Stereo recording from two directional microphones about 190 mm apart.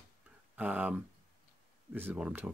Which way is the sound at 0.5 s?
10° right (ahead or behind).